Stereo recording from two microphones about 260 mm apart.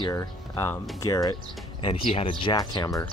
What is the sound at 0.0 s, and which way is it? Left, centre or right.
Speech, centre.